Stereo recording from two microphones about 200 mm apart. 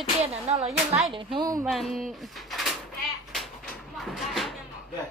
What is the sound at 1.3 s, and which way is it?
Speech, 15° right (ahead or behind).